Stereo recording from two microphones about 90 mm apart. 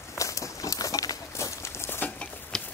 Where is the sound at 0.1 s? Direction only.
35° left (ahead or behind).